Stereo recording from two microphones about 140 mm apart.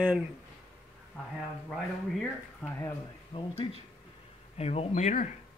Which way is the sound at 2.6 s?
20° left (ahead or behind).